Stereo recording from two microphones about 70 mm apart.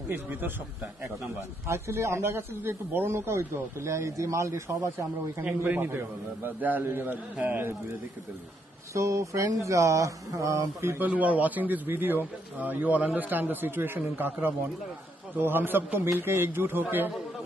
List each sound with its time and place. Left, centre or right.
0.1 s a man's voice: right
1.7 s speech: right
5.8 s a man's voice: right
8.9 s speech: right
11.0 s a man's voice: right